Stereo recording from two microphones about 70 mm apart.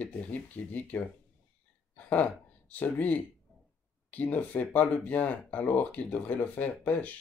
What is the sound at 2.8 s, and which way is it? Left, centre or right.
Speech, left.